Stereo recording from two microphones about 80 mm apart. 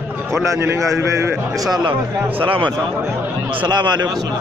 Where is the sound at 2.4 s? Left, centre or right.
Right.